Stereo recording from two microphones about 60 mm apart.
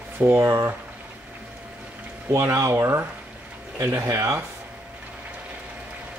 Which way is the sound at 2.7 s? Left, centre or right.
Right.